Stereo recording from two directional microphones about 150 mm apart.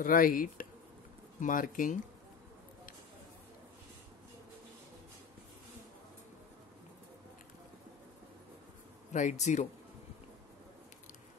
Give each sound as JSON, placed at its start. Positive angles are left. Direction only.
{"t": 0.0, "sound": "speech", "side_deg": 65}
{"t": 9.1, "sound": "speech", "side_deg": 50}